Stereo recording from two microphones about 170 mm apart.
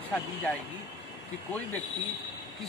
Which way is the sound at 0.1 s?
10° left (ahead or behind).